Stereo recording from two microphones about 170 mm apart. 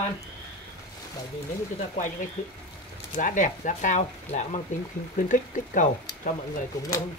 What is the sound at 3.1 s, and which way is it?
Speech, 50° left (ahead or behind).